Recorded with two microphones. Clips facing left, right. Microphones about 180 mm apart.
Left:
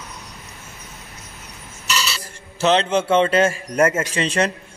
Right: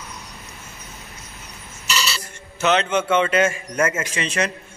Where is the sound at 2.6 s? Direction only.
35° left (ahead or behind).